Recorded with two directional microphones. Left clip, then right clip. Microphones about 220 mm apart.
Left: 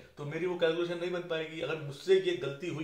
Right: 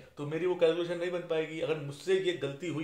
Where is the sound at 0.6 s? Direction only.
45° right (ahead or behind).